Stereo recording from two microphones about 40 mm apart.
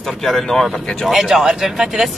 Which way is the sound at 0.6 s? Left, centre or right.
Centre.